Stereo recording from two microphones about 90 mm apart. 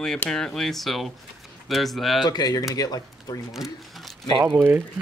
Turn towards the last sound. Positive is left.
turn(degrees=-25)  # may be behind; listen again after turning